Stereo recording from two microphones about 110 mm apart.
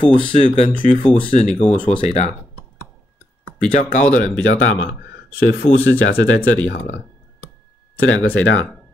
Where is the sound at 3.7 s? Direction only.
90° left.